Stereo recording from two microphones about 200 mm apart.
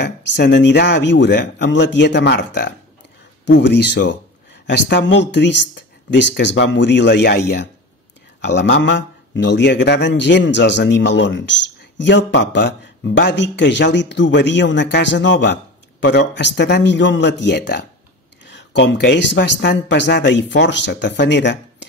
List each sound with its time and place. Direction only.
0.0 s speech: 60° left (ahead or behind)